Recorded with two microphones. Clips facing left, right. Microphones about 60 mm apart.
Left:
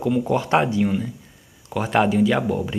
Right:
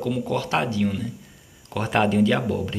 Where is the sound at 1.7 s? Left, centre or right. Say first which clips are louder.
Left 2 dB; centre.